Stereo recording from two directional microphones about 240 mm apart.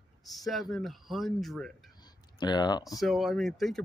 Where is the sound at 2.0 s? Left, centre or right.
Centre.